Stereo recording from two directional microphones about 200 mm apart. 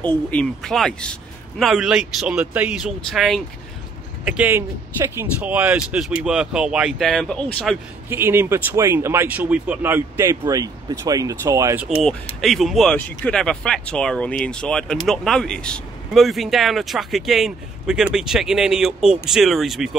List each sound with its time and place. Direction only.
0.0 s speech: 5° left (ahead or behind)
8.1 s speech: 10° right (ahead or behind)